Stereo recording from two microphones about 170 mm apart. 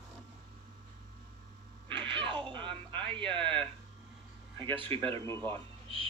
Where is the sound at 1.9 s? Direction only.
30° right (ahead or behind).